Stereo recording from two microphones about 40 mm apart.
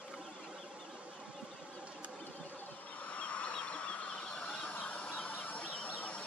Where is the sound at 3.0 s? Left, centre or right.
Left.